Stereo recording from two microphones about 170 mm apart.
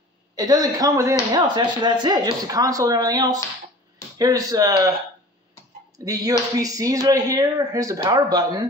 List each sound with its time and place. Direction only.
0.4 s speech: 20° right (ahead or behind)
5.9 s speech: 20° right (ahead or behind)